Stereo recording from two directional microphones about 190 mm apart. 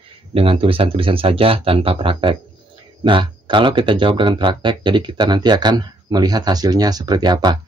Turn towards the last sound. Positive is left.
turn(degrees=-20)  # may be behind; listen again after turning